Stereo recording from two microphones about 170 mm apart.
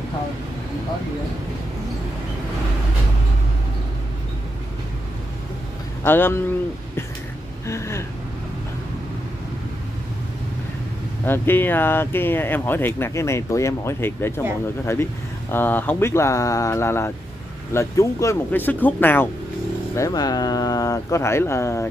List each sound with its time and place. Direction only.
6.0 s speech: 15° left (ahead or behind)
7.6 s speech: 15° left (ahead or behind)
11.2 s speech: 10° left (ahead or behind)
15.5 s speech: 10° left (ahead or behind)
20.0 s speech: 20° left (ahead or behind)